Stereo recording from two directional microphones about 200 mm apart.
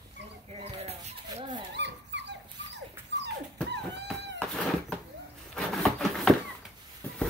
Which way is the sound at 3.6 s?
60° right (ahead or behind).